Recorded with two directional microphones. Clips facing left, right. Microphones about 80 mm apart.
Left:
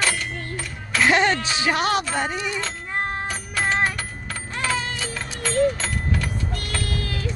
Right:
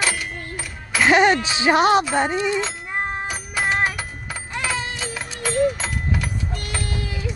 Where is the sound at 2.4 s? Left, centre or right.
Centre.